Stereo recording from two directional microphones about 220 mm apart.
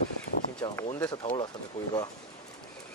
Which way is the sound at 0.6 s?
15° left (ahead or behind).